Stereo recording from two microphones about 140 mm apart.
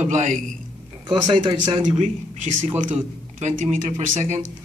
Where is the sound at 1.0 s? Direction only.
35° right (ahead or behind).